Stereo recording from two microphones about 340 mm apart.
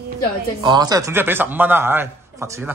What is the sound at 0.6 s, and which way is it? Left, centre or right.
A man's voice, centre.